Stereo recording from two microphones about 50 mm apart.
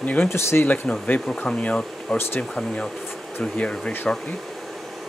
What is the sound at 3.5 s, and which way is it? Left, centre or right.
Speech, centre.